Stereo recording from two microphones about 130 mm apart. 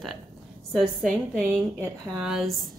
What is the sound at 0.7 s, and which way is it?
A woman's voice, centre (ahead or behind).